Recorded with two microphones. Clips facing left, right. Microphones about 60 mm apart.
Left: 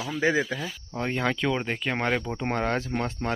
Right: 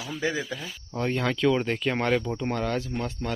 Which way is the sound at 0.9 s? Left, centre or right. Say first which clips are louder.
Right 1 dB; centre.